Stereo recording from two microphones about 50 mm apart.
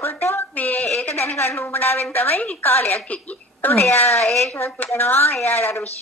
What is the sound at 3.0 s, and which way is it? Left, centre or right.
Speech, left.